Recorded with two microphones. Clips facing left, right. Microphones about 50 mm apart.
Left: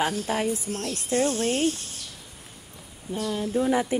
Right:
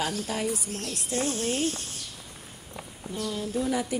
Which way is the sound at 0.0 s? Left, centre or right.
Left.